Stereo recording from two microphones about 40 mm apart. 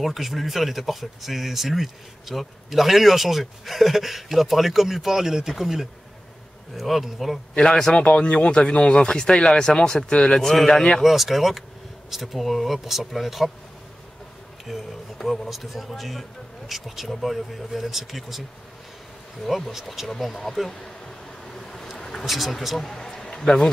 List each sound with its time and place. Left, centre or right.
0.0 s speech: centre
7.5 s a man's voice: centre
8.0 s a man's voice: left; by 11.0 s centre
11.0 s speech: centre
14.7 s speech: centre
19.4 s speech: centre
20.5 s a sound: centre
22.2 s speech: centre
22.8 s a sound: centre